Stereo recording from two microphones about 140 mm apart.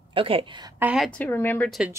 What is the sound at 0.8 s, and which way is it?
Speech, 10° right (ahead or behind).